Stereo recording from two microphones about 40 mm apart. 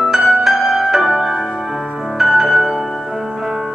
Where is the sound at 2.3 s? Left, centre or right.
Centre.